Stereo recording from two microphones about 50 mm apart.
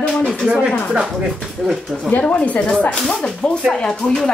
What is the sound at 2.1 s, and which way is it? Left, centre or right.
A woman's voice, left.